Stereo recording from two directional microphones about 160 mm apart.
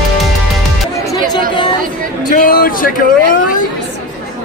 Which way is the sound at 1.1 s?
25° left (ahead or behind).